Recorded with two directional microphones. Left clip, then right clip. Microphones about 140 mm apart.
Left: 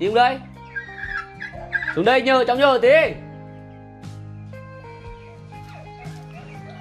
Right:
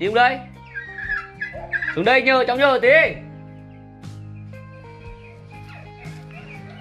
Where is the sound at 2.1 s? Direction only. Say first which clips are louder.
Right 1 dB; 20° left (ahead or behind).